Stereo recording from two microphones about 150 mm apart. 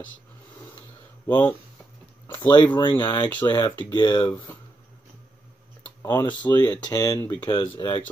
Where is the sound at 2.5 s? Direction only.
30° left (ahead or behind).